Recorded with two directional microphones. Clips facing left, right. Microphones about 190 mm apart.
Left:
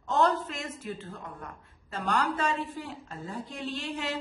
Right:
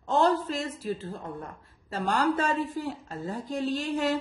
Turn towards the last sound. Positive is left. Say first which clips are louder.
# right 7 dB
turn(degrees=-45)  # may be behind; listen again after turning